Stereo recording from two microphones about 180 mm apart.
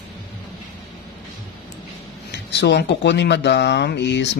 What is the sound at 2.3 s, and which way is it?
Speech, 70° left (ahead or behind).